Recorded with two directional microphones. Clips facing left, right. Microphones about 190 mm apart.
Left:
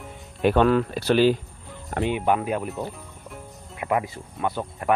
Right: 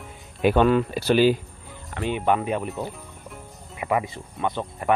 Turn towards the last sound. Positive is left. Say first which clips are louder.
# even
turn(degrees=5)  # may be behind; listen again after turning